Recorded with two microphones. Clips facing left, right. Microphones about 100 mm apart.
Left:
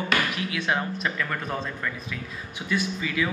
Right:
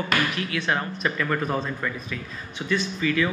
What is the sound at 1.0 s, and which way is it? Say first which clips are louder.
Speech: right 4 dB; centre (ahead or behind).